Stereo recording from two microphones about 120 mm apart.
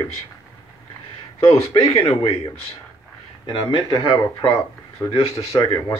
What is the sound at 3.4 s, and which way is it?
Speech, 40° left (ahead or behind).